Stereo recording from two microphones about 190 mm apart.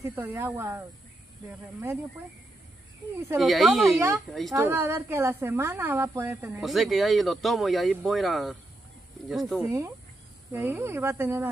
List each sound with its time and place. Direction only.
0.0 s a woman's voice: 10° right (ahead or behind)
3.3 s speech: centre (ahead or behind)
4.6 s a woman's voice: 15° right (ahead or behind)
6.6 s speech: centre (ahead or behind)
9.6 s a woman's voice: 15° right (ahead or behind)